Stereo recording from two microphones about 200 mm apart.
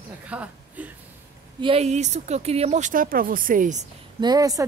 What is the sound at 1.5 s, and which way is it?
Speech, 30° right (ahead or behind).